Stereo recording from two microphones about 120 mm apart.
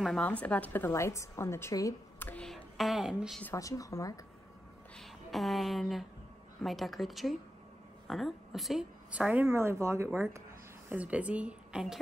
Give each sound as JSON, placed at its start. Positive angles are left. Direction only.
{"t": 0.2, "sound": "a woman's voice", "side_deg": 10}
{"t": 2.1, "sound": "a sound", "side_deg": 15}
{"t": 2.4, "sound": "a woman's voice", "side_deg": 0}
{"t": 3.5, "sound": "a woman's voice", "side_deg": 30}
{"t": 4.9, "sound": "a woman's voice", "side_deg": 0}
{"t": 9.1, "sound": "a woman's voice", "side_deg": -15}
{"t": 10.9, "sound": "a woman's voice", "side_deg": -10}